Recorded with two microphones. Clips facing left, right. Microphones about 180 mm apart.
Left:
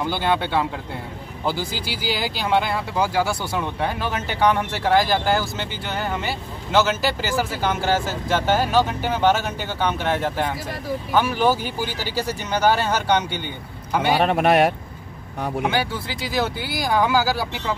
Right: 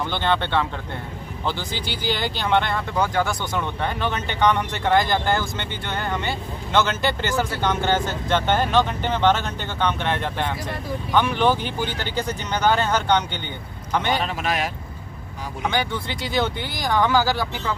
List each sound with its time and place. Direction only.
0.0 s speech: 10° left (ahead or behind)
14.1 s a man's voice: 60° left (ahead or behind)
15.6 s speech: 5° left (ahead or behind)